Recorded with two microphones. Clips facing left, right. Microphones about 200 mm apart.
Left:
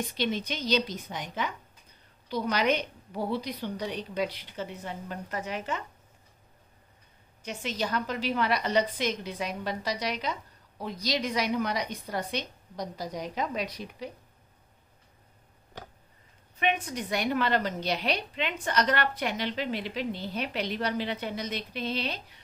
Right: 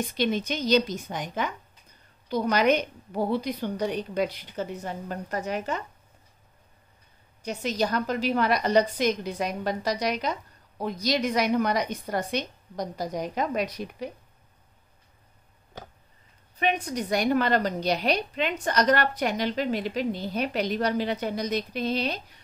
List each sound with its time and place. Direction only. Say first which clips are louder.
0.2 s a woman's voice: right 5 dB; 45° right (ahead or behind)
7.4 s a woman's voice: right 5 dB; 40° right (ahead or behind)
16.5 s a woman's voice: right 3 dB; 40° right (ahead or behind)